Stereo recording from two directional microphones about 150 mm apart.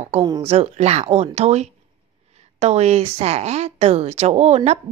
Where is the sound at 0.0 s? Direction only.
40° right (ahead or behind).